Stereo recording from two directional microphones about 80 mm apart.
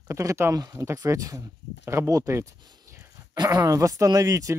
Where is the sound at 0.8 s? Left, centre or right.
Right.